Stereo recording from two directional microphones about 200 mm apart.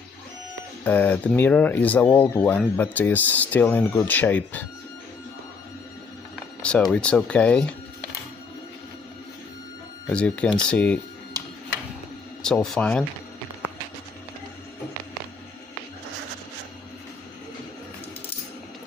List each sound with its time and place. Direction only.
0.8 s speech: 10° left (ahead or behind)
6.6 s speech: 5° left (ahead or behind)
10.0 s speech: 5° left (ahead or behind)
12.4 s speech: 5° left (ahead or behind)